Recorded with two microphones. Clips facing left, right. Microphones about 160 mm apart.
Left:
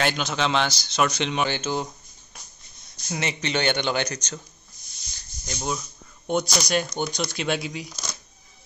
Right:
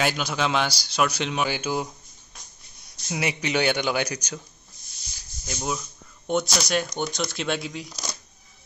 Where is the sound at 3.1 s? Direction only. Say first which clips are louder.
Right 1 dB; 10° right (ahead or behind).